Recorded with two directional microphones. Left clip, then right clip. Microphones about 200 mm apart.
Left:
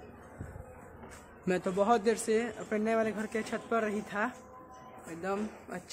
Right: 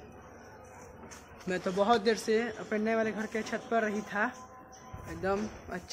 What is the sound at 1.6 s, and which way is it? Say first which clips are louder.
Speech: right 1 dB; 10° left (ahead or behind).